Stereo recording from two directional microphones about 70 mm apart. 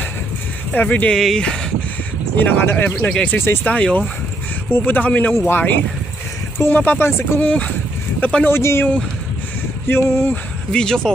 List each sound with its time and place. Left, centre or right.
0.7 s speech: left
1.1 s speech: centre
2.6 s speech: left
3.0 s speech: centre
3.3 s speech: left
3.6 s speech: centre
7.4 s speech: left
8.5 s speech: left
9.8 s speech: left
10.3 s speech: centre